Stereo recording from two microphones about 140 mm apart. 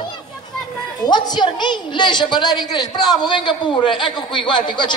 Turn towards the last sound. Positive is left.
turn(degrees=35)  # may be behind; listen again after turning